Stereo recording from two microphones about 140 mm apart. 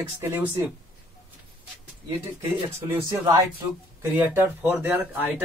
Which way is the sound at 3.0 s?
25° right (ahead or behind).